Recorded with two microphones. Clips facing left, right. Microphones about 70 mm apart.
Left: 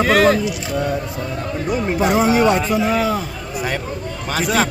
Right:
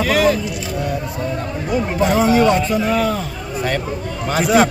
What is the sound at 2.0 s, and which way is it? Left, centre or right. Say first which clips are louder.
Speech: right 1 dB; centre.